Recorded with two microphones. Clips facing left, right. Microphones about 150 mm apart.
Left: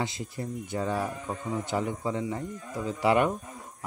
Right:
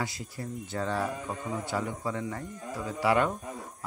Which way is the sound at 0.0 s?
25° left (ahead or behind).